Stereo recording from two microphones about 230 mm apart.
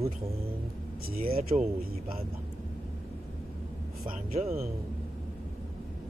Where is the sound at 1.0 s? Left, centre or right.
Right.